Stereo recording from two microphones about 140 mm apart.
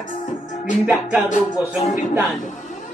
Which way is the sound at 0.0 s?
65° left (ahead or behind).